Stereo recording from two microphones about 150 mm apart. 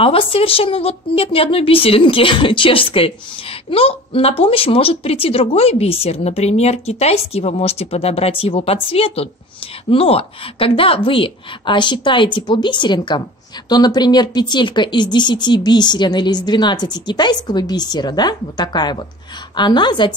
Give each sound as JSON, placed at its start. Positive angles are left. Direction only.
{"t": 0.0, "sound": "speech", "side_deg": 40}